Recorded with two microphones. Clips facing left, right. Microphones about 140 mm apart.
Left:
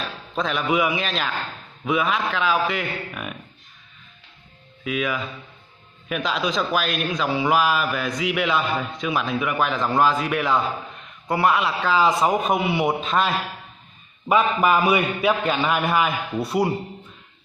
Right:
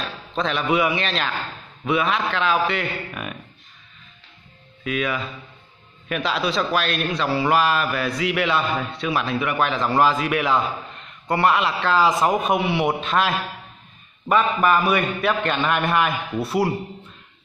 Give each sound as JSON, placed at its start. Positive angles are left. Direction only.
{"t": 0.0, "sound": "a man's voice", "side_deg": 0}
{"t": 4.8, "sound": "a man's voice", "side_deg": 0}